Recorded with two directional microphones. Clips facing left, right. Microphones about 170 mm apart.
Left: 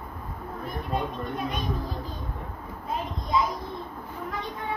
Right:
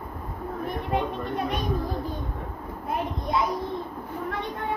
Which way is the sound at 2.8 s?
60° right (ahead or behind).